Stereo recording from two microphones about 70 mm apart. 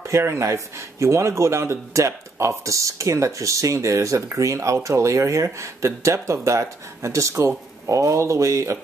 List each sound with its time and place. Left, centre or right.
0.0 s speech: right